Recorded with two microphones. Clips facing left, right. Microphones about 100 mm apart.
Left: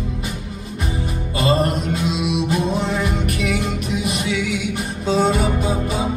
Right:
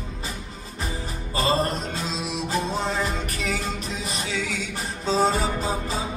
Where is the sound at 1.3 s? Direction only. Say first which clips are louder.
Left 4 dB; 30° right (ahead or behind).